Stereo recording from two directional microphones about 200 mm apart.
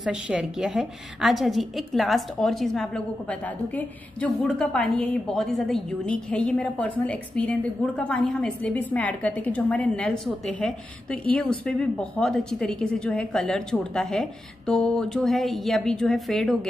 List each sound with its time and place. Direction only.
0.0 s a woman's voice: 5° right (ahead or behind)